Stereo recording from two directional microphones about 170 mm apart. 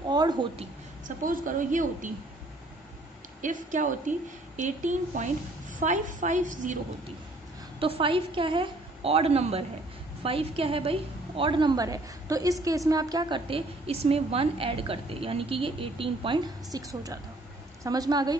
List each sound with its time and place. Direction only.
0.1 s a sound: 25° right (ahead or behind)
1.0 s a woman's voice: 50° right (ahead or behind)
3.3 s a woman's voice: 50° right (ahead or behind)
7.8 s a woman's voice: 30° right (ahead or behind)
16.7 s a woman's voice: 20° right (ahead or behind)